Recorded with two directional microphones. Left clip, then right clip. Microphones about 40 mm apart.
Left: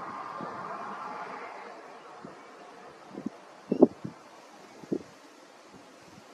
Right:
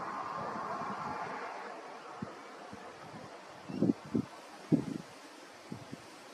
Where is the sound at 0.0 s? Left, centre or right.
Centre.